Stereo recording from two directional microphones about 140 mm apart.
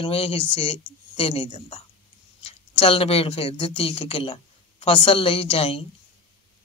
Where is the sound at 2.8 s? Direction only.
45° left (ahead or behind).